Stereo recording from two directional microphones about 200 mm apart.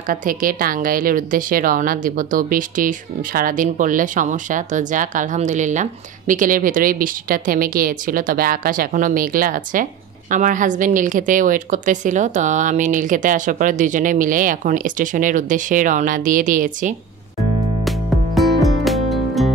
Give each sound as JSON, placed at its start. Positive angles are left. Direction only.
{"t": 0.1, "sound": "a woman's voice", "side_deg": -45}
{"t": 17.8, "sound": "music", "side_deg": 0}